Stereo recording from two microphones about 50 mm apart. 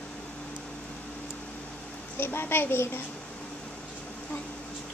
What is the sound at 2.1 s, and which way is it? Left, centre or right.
Speech, left.